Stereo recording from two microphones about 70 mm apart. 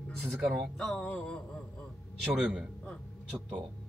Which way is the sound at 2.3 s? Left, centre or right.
Centre.